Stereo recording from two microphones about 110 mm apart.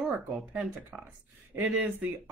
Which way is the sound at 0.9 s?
25° right (ahead or behind).